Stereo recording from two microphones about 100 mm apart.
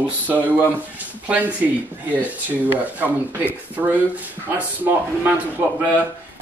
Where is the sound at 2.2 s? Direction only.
15° right (ahead or behind).